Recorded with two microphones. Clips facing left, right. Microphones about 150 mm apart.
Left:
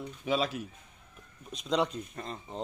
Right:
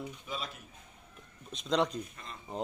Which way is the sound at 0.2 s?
90° left.